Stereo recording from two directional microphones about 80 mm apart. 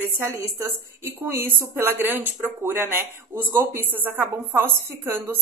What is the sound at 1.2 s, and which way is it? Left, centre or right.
A woman's voice, right.